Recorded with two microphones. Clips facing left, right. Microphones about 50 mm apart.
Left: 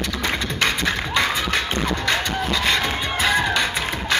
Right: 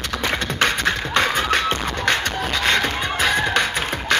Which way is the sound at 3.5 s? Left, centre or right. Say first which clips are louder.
Right 1 dB; right.